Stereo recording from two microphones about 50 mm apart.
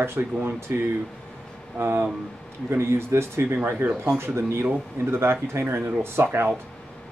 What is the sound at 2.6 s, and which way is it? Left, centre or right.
Speech, right.